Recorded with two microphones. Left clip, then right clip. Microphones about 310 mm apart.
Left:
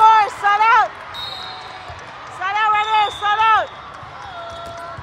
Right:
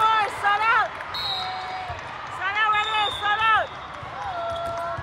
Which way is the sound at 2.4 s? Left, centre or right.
Centre.